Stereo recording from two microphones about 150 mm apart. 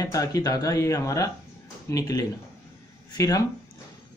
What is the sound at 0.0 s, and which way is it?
Speech, 20° left (ahead or behind).